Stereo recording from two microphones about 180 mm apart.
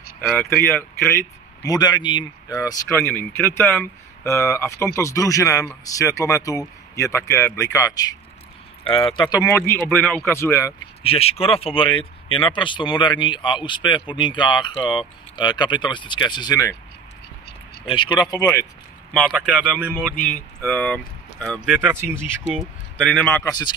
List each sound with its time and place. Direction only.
0.7 s speech: 15° left (ahead or behind)
11.0 s speech: 35° left (ahead or behind)
17.8 s speech: 25° left (ahead or behind)
19.1 s speech: centre (ahead or behind)
20.0 s speech: 10° left (ahead or behind); by 22.3 s 10° right (ahead or behind)
22.5 s speech: centre (ahead or behind)